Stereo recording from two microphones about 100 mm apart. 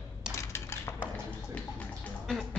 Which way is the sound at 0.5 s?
25° left (ahead or behind).